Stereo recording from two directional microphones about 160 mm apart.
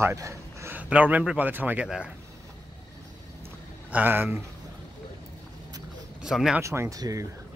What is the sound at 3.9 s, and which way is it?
Speech, 10° right (ahead or behind).